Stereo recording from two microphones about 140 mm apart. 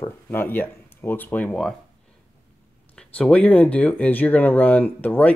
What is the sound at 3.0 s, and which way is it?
Speech, 5° left (ahead or behind).